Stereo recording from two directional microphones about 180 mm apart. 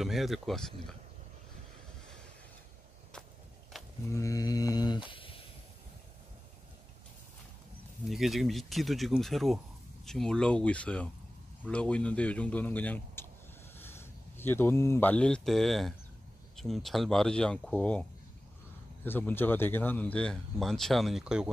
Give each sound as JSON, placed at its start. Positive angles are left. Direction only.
{"t": 0.0, "sound": "speech", "side_deg": 0}
{"t": 3.7, "sound": "a sound", "side_deg": 0}
{"t": 4.1, "sound": "mantra", "side_deg": 20}
{"t": 5.1, "sound": "a sound", "side_deg": 30}
{"t": 8.1, "sound": "speech", "side_deg": 0}
{"t": 19.0, "sound": "speech", "side_deg": 10}